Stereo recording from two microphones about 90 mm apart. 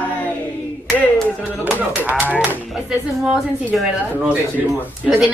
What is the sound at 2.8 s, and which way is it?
A woman's voice, 5° right (ahead or behind).